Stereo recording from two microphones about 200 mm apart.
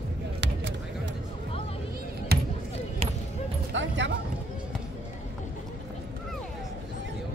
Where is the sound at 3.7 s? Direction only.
65° right (ahead or behind).